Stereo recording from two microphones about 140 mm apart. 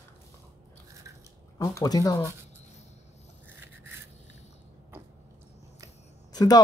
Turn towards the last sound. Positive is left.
turn(degrees=30)  # may be behind; listen again after turning